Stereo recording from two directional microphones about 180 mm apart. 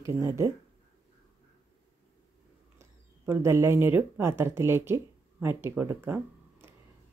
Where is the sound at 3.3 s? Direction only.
15° right (ahead or behind).